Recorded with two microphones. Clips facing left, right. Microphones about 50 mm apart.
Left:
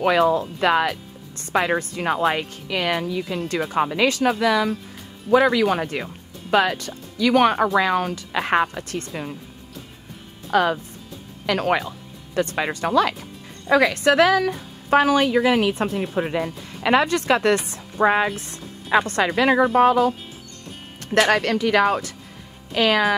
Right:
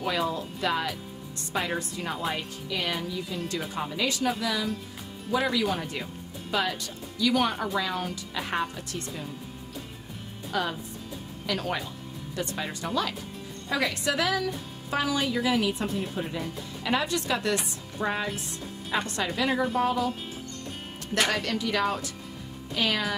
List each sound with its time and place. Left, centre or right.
0.0 s speech: left
10.5 s a woman's voice: left
17.9 s a woman's voice: left
21.2 s speech: left